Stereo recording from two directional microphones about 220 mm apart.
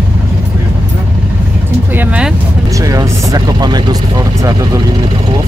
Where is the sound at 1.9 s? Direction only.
5° right (ahead or behind).